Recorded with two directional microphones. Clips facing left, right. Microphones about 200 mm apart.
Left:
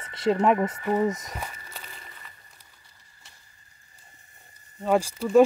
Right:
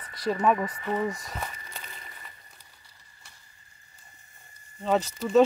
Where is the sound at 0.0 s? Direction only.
25° left (ahead or behind).